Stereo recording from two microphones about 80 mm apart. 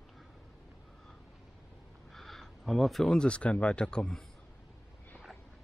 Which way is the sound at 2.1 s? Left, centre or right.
Centre.